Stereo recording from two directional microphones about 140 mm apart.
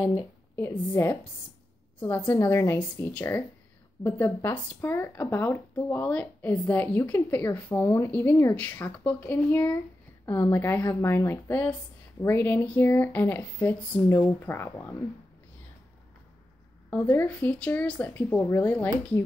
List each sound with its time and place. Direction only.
0.6 s a woman's voice: 15° left (ahead or behind)
16.9 s speech: 15° left (ahead or behind)